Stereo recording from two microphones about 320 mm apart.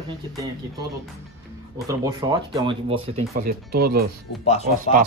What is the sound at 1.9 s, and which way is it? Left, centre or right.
Speech, centre.